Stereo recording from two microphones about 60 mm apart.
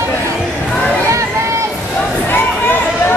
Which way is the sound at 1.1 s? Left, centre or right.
Right.